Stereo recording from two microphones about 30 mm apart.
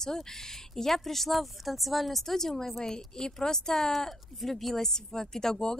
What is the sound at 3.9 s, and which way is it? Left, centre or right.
A woman's voice, centre.